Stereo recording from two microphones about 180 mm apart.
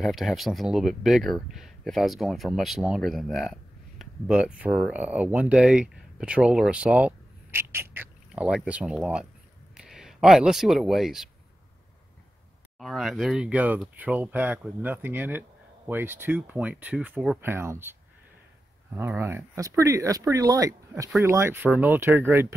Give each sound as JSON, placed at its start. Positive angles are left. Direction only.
{"t": 0.0, "sound": "speech", "side_deg": 0}
{"t": 12.7, "sound": "speech", "side_deg": 0}
{"t": 18.9, "sound": "speech", "side_deg": -10}